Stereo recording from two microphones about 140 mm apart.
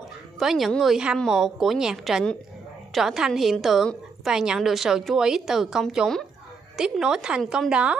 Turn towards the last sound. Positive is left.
turn(degrees=-5)  # may be behind; listen again after turning